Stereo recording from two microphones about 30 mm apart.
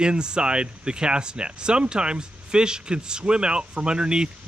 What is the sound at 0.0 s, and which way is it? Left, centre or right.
Speech, right.